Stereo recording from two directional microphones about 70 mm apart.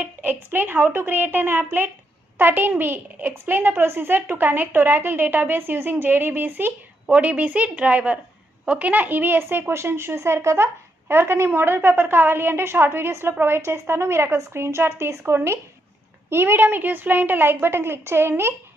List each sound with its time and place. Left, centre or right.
0.2 s a child's voice: right